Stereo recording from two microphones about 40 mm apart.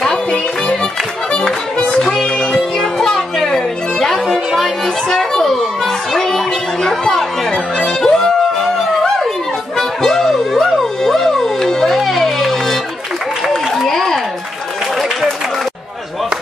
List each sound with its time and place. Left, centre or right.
0.0 s music: left
3.4 s music: centre
6.1 s chatter: centre
8.0 s a sound: centre
9.8 s music: centre
13.8 s a sound: centre